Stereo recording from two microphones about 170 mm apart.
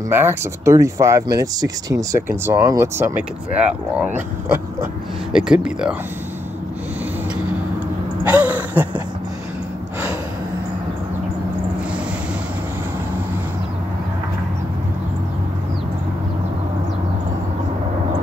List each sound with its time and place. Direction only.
0.1 s speech: 15° right (ahead or behind)
5.3 s speech: 5° right (ahead or behind)
8.2 s a sound: 10° right (ahead or behind)